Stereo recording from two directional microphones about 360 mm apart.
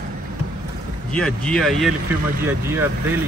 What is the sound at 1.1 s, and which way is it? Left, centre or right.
Speech, centre.